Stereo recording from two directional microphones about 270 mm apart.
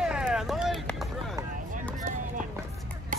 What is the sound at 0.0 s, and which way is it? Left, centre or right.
Vehicle, centre.